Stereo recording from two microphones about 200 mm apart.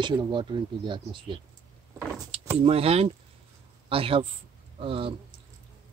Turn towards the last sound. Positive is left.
turn(degrees=-25)  # may be behind; listen again after turning